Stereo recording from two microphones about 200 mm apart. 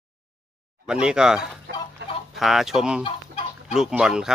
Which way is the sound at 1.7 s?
65° right (ahead or behind).